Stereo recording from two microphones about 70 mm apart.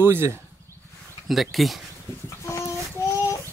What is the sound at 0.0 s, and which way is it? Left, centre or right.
Speech, right.